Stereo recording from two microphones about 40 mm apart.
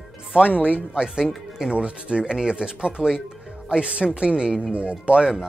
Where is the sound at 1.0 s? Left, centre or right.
Centre.